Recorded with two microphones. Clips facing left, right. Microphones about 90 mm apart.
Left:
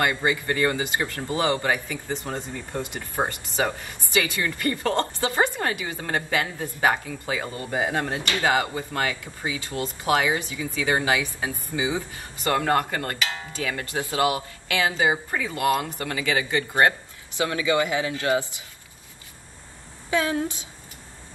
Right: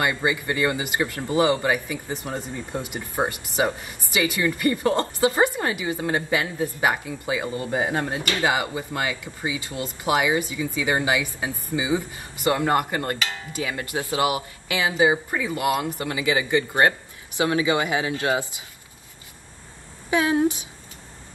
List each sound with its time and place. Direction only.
0.0 s speech: 15° right (ahead or behind)
20.1 s speech: 20° right (ahead or behind)